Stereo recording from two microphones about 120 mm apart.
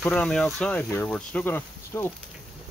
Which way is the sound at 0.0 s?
10° left (ahead or behind).